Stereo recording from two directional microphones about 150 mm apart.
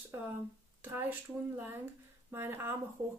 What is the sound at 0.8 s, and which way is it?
Speech, 15° right (ahead or behind).